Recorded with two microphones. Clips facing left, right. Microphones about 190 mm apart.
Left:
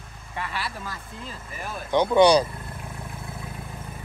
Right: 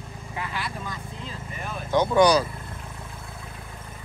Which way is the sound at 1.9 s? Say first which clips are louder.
Left 2 dB; 25° left (ahead or behind).